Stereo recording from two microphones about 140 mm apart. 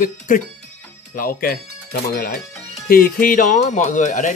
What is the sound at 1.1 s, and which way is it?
Speech, 90° left.